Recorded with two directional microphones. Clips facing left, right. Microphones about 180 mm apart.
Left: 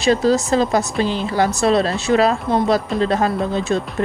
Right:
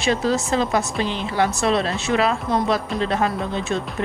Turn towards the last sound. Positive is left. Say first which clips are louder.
# left 5 dB
turn(degrees=35)  # may be behind; listen again after turning